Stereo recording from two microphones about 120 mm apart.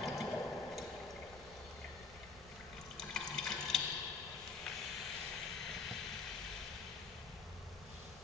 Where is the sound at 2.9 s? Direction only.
5° left (ahead or behind).